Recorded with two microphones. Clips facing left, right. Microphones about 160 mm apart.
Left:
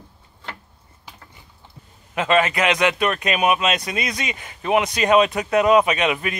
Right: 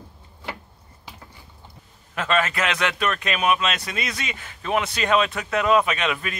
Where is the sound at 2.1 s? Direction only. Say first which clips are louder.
Left 4 dB; 15° left (ahead or behind).